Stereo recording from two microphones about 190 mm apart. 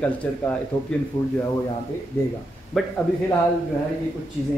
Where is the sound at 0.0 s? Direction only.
5° left (ahead or behind).